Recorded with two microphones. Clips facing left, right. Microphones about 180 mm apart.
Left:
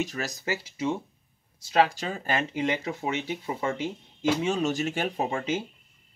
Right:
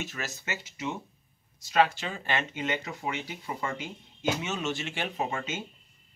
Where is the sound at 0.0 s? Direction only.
35° left (ahead or behind).